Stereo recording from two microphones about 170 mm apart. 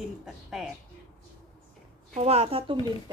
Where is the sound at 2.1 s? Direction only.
35° right (ahead or behind).